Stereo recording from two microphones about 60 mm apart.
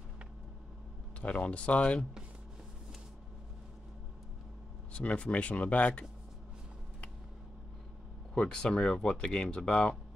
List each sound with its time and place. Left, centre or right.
1.2 s speech: left
4.9 s speech: centre
8.4 s speech: centre